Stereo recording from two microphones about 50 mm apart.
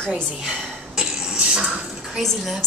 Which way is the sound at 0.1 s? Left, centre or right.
Centre.